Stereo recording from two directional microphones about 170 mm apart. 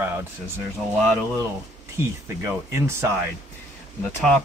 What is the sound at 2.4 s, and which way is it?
Speech, 15° right (ahead or behind).